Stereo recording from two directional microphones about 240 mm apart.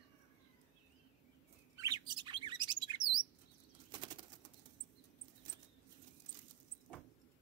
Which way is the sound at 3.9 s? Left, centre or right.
Centre.